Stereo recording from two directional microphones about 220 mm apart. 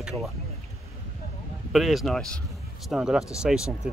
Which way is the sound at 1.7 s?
Centre (ahead or behind).